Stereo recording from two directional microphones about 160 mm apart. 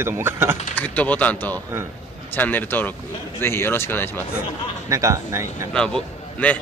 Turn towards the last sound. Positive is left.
turn(degrees=5)  # may be behind; listen again after turning